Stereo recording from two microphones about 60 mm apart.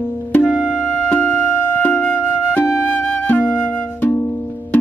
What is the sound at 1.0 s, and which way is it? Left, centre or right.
Music, left.